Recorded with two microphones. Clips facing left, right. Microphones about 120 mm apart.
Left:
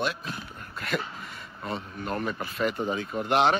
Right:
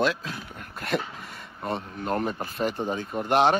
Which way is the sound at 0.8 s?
50° right (ahead or behind).